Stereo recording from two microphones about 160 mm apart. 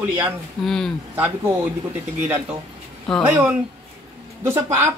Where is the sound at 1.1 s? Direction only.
10° right (ahead or behind).